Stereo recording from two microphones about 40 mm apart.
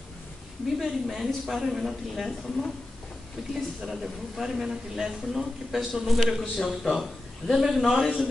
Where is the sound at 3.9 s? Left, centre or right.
Centre.